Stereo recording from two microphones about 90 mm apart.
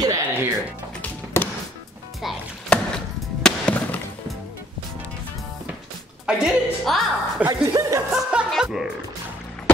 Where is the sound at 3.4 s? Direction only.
10° left (ahead or behind).